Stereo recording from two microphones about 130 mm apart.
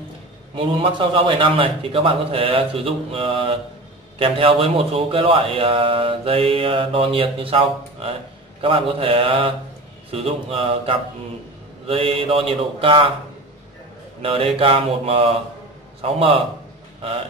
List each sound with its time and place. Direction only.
0.6 s speech: 45° right (ahead or behind)
14.2 s speech: 45° right (ahead or behind)